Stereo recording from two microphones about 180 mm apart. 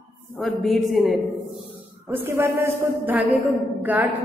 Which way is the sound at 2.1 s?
10° right (ahead or behind).